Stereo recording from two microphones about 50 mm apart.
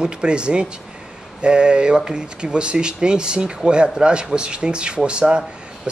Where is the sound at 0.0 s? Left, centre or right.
Centre.